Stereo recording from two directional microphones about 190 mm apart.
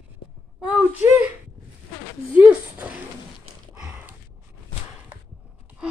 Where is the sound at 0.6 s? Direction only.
5° right (ahead or behind).